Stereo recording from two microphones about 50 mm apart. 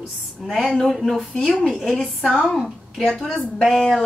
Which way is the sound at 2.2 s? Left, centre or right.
Centre.